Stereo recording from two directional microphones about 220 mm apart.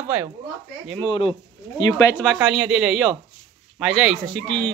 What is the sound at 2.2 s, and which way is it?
Speech, 5° right (ahead or behind).